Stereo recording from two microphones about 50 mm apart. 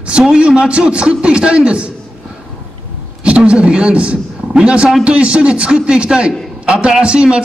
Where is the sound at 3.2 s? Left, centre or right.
Right.